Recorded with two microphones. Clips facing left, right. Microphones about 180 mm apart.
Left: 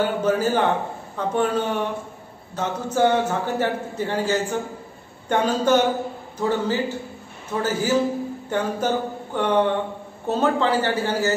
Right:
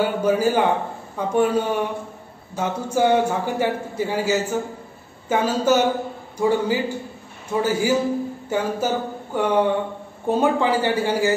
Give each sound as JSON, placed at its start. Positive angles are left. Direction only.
{"t": 0.0, "sound": "a man's voice", "side_deg": -10}